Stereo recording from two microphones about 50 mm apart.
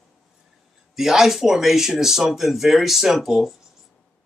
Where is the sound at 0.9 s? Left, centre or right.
Centre.